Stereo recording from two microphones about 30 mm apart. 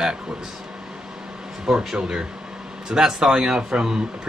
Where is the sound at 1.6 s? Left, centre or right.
Right.